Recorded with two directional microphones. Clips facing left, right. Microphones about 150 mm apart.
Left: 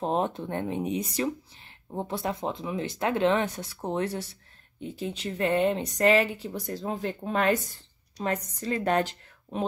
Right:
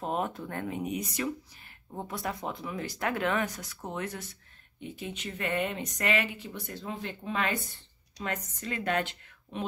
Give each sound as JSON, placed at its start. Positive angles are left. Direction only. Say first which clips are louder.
{"t": 0.0, "sound": "speech", "louder": "left 5 dB", "side_deg": 25}